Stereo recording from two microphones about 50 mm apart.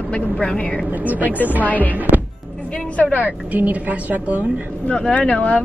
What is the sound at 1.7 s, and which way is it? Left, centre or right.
Speech, left.